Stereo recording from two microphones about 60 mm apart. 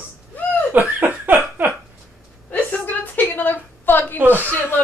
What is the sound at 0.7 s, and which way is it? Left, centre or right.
Laughter, right.